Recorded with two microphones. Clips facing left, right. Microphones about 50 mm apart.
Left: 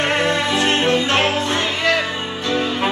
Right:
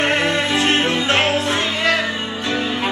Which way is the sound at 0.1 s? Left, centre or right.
Right.